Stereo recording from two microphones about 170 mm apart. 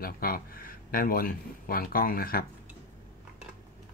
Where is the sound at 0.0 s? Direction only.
60° left (ahead or behind).